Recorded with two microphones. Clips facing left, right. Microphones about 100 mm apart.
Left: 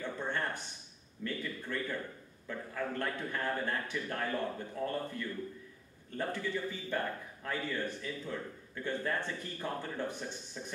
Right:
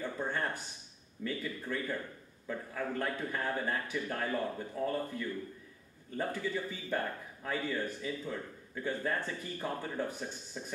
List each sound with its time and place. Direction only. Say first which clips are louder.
0.0 s a sound: right 1 dB; 10° right (ahead or behind)
1.2 s a man's voice: right 1 dB; 10° right (ahead or behind)
6.1 s a man's voice: right 1 dB; 10° right (ahead or behind)